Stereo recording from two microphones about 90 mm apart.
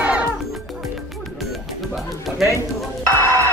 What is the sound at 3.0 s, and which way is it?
Music, 35° right (ahead or behind).